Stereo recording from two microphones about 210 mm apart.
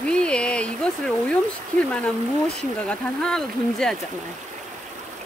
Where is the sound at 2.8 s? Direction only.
5° left (ahead or behind).